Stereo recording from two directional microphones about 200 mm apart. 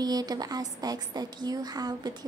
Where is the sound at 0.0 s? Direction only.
20° right (ahead or behind).